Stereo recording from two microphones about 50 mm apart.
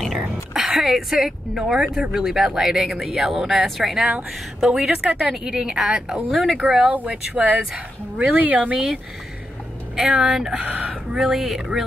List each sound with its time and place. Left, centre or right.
0.1 s a woman's voice: centre
6.3 s speech: centre
6.6 s a woman's voice: right
10.0 s a woman's voice: right
10.6 s speech: right
11.1 s a woman's voice: centre